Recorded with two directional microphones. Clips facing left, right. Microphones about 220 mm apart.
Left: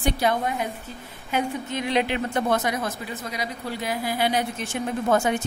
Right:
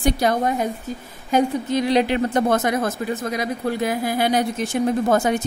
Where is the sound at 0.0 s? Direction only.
40° right (ahead or behind).